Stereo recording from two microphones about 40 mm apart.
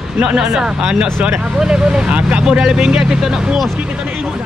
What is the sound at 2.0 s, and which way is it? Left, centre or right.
Speech, right.